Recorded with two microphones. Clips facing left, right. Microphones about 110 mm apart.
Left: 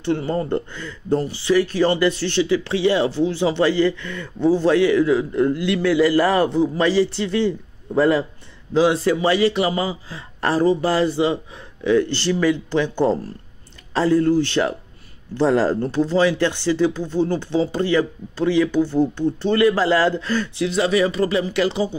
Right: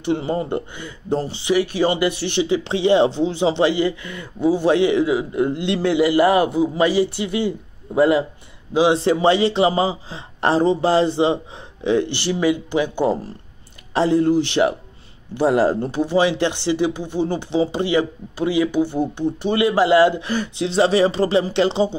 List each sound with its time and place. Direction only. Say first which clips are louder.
0.0 s a man's voice: even; 15° right (ahead or behind)